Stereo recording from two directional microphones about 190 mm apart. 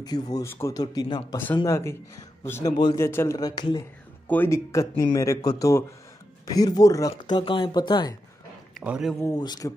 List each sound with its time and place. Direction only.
0.0 s speech: 20° left (ahead or behind)
2.8 s speech: 25° left (ahead or behind)
8.7 s a man's voice: 5° right (ahead or behind)
9.2 s speech: 20° left (ahead or behind)